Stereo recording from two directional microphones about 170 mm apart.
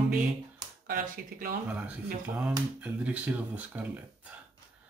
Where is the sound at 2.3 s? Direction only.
5° right (ahead or behind).